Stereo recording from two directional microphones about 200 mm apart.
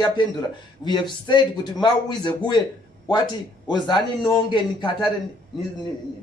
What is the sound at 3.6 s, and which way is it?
Speech, 20° left (ahead or behind).